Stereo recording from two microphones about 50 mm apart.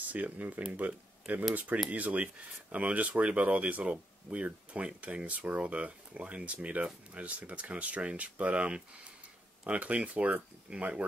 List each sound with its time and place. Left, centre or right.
0.1 s speech: right